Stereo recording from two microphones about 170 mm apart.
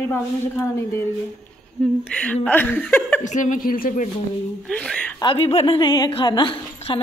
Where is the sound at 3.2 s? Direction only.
45° left (ahead or behind).